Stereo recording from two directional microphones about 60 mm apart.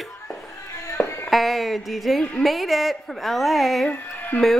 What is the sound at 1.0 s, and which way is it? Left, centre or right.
Music, left.